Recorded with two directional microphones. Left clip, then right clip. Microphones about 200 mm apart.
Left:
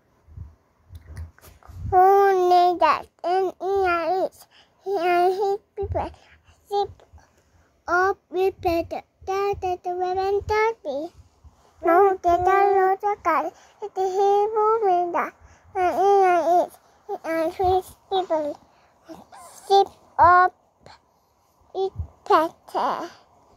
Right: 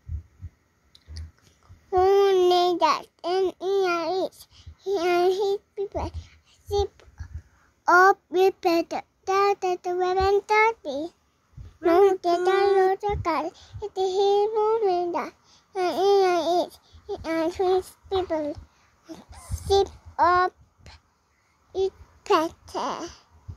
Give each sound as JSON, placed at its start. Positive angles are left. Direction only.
{"t": 1.9, "sound": "babbling", "side_deg": -15}
{"t": 4.1, "sound": "babbling", "side_deg": 15}
{"t": 4.8, "sound": "speech", "side_deg": -10}
{"t": 5.8, "sound": "a sound", "side_deg": -10}
{"t": 7.8, "sound": "child singing", "side_deg": -20}
{"t": 12.1, "sound": "speech", "side_deg": -15}
{"t": 12.7, "sound": "a sound", "side_deg": -30}
{"t": 15.5, "sound": "babbling", "side_deg": -10}
{"t": 16.1, "sound": "speech", "side_deg": -15}
{"t": 19.0, "sound": "a sound", "side_deg": -15}
{"t": 21.7, "sound": "a child's voice", "side_deg": -15}